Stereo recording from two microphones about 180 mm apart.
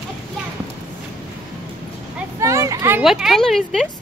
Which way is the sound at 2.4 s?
15° right (ahead or behind).